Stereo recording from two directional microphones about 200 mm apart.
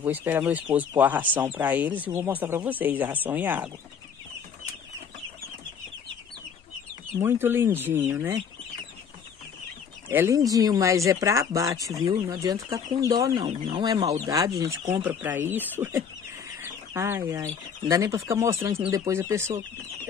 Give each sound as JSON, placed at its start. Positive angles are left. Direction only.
{"t": 0.0, "sound": "speech", "side_deg": -10}
{"t": 7.2, "sound": "speech", "side_deg": -10}
{"t": 10.0, "sound": "speech", "side_deg": -10}